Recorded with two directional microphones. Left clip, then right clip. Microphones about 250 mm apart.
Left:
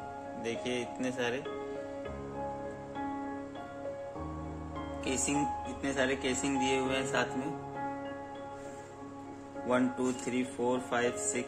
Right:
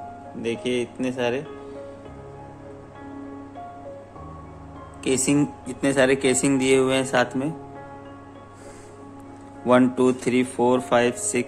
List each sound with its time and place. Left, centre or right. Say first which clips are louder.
0.4 s speech: right 10 dB; centre
5.0 s speech: right 11 dB; right
9.7 s speech: right 13 dB; right